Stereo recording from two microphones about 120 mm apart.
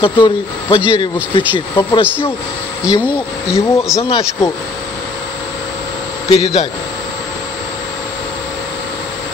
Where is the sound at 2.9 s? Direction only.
10° right (ahead or behind).